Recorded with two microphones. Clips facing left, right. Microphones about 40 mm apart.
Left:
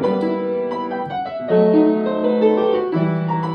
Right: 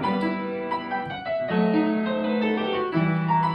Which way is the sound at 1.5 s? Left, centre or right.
Right.